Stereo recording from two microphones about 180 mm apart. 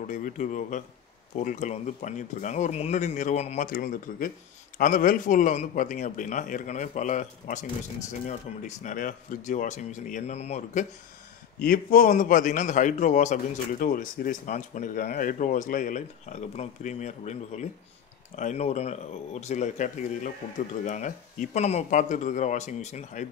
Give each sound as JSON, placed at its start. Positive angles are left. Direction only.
{"t": 0.0, "sound": "a man's voice", "side_deg": 45}
{"t": 11.6, "sound": "a man's voice", "side_deg": 50}